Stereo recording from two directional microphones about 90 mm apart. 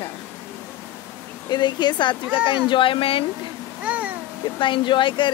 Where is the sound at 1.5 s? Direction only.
55° left (ahead or behind); by 3.2 s 90° left.